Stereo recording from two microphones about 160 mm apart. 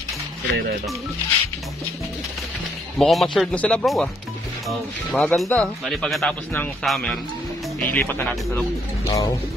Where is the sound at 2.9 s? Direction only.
Centre (ahead or behind).